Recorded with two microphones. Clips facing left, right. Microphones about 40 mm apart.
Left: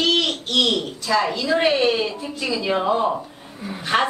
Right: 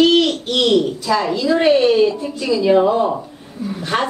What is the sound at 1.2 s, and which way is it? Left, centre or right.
A woman's voice, centre.